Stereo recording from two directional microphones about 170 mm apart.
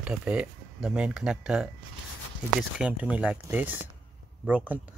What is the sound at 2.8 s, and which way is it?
Speech, 5° right (ahead or behind).